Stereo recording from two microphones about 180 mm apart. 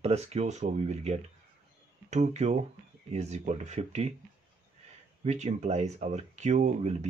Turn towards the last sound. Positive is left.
turn(degrees=-40)  # may be behind; listen again after turning